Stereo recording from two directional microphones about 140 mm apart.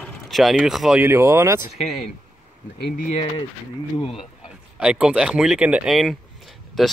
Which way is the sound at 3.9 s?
40° left (ahead or behind).